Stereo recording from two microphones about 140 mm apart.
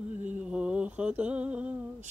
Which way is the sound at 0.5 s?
5° right (ahead or behind).